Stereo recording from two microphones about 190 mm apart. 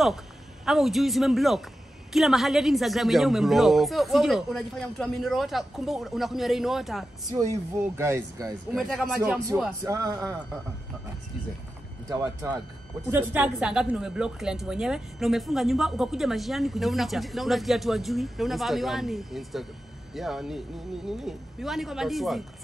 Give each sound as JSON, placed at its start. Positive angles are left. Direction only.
{"t": 0.7, "sound": "a woman's voice", "side_deg": 0}
{"t": 7.2, "sound": "speech", "side_deg": -20}
{"t": 8.7, "sound": "a woman's voice", "side_deg": 0}
{"t": 9.2, "sound": "speech", "side_deg": -15}
{"t": 13.1, "sound": "a woman's voice", "side_deg": -10}